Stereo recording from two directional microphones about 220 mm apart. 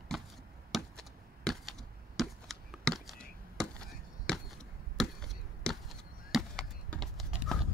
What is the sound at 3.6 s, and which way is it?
Chop, 5° left (ahead or behind).